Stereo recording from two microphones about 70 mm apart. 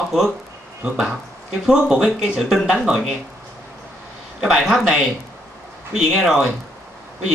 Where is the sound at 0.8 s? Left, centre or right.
Centre.